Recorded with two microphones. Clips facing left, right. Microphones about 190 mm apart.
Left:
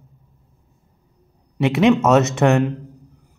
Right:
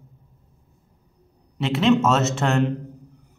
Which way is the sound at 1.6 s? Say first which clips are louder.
Left 4 dB; 65° left (ahead or behind).